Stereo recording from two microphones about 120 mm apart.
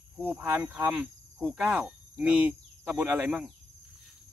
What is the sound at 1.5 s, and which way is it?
Cricket, 10° right (ahead or behind).